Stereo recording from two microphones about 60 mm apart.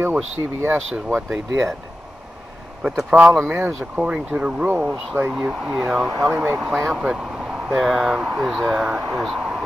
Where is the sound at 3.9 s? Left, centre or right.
Centre.